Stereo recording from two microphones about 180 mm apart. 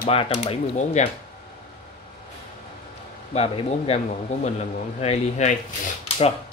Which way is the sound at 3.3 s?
35° left (ahead or behind).